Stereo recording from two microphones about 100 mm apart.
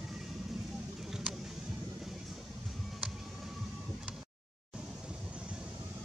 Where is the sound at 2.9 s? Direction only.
5° right (ahead or behind).